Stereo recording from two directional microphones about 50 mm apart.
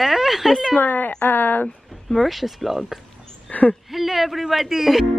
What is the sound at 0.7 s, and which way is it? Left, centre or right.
Speech, left.